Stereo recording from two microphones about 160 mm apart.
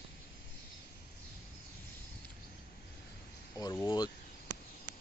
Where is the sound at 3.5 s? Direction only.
20° left (ahead or behind).